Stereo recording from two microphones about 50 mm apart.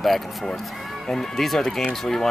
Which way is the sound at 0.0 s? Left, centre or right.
Centre.